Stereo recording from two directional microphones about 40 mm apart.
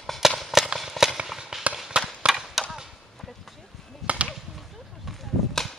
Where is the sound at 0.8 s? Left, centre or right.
Centre.